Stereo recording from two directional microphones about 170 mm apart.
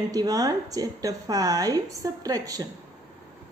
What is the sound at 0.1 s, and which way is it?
Speech, 20° right (ahead or behind).